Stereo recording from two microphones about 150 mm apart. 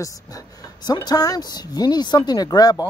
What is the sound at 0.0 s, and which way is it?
Speech, 20° left (ahead or behind).